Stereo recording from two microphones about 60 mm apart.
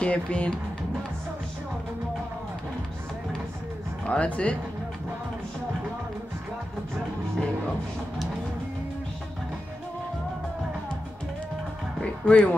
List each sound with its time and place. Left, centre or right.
0.0 s speech: centre
4.0 s speech: centre
12.0 s speech: left